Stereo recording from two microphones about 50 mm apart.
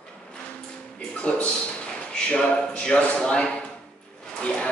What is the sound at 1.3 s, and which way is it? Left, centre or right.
A man's voice, left.